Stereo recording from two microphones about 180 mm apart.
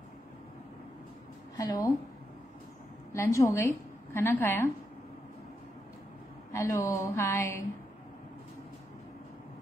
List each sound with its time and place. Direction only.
1.6 s a woman's voice: 20° left (ahead or behind)
3.1 s a woman's voice: 15° left (ahead or behind)
6.5 s a woman's voice: 15° left (ahead or behind)